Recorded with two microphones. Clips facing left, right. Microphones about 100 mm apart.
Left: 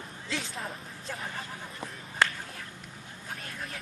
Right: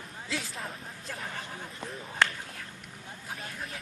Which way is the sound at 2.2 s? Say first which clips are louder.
Left 1 dB; 5° left (ahead or behind).